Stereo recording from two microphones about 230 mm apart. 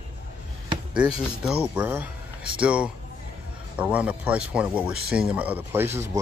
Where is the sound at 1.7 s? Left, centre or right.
Centre.